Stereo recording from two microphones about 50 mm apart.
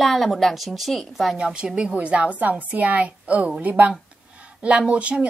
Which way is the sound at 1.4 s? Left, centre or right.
Centre.